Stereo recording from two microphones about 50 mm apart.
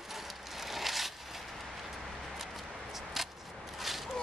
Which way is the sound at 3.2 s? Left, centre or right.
Centre.